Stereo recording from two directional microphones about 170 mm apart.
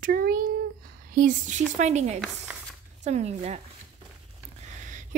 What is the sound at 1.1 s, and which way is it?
A woman's voice, 50° right (ahead or behind).